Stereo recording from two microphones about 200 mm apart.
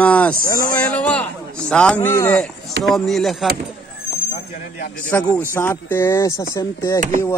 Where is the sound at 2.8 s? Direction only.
Centre (ahead or behind).